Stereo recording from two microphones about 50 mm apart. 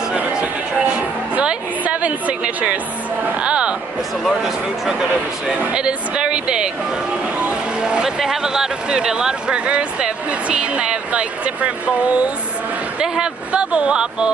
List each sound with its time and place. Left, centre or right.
0.3 s a sound: centre
1.3 s speech: right
4.2 s speech: centre
5.7 s speech: centre
13.0 s speech: centre